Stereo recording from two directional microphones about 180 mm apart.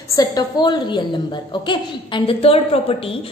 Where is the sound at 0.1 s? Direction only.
20° left (ahead or behind).